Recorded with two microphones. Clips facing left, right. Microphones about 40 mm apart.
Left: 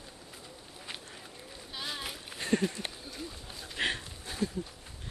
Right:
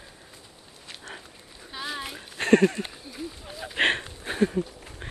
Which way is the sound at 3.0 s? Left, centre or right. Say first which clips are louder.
Right 5 dB; centre.